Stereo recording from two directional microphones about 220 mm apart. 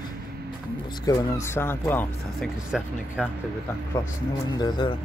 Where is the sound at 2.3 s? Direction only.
Centre (ahead or behind).